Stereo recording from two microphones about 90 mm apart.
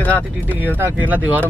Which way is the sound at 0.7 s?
20° right (ahead or behind).